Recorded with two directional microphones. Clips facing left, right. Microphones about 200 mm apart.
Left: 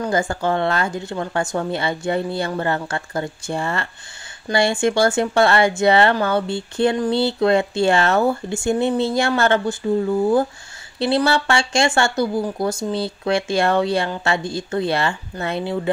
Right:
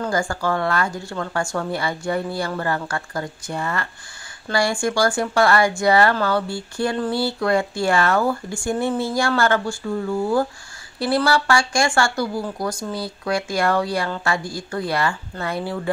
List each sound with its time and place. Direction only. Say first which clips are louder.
0.0 s speech: left 2 dB; 20° left (ahead or behind)